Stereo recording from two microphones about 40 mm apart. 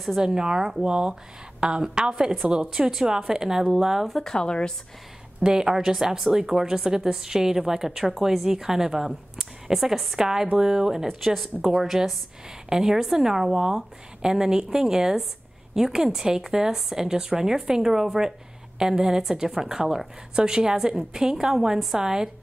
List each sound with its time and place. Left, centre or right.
0.2 s a woman's voice: centre
0.8 s a woman's voice: right
4.1 s speech: centre
4.5 s speech: left
5.4 s a woman's voice: centre
11.1 s a woman's voice: centre